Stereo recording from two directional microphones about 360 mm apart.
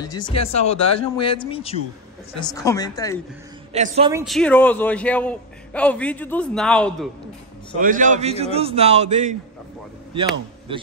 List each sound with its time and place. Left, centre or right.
0.0 s speech: centre
3.7 s a man's voice: centre
4.2 s a man's voice: centre
7.8 s a man's voice: right
10.7 s a man's voice: centre